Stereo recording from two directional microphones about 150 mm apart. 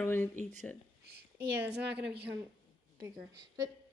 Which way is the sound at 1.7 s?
90° right.